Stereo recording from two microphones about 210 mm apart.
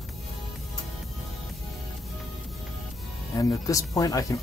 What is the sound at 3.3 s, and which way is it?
Speech, 15° left (ahead or behind).